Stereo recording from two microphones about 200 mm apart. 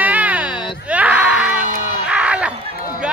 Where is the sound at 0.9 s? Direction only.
5° right (ahead or behind).